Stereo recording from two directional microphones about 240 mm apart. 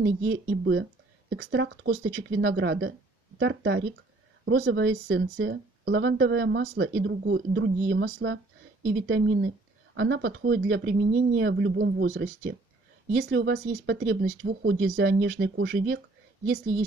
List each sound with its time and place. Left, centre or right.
0.0 s speech: right